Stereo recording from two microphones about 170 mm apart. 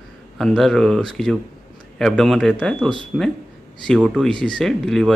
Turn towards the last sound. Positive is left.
turn(degrees=0)  # may be behind; listen again after turning